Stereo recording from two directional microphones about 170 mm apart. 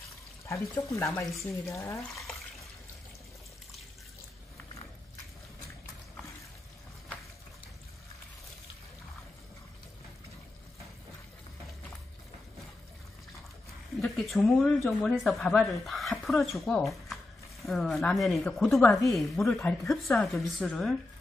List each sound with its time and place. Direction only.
0.5 s speech: 15° left (ahead or behind)
13.9 s a sound: centre (ahead or behind)
14.9 s speech: centre (ahead or behind)
18.9 s a woman's voice: 20° left (ahead or behind)
19.1 s speech: 5° left (ahead or behind)